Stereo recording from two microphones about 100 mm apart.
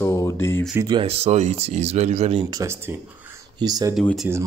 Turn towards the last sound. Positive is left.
turn(degrees=-20)  # may be behind; listen again after turning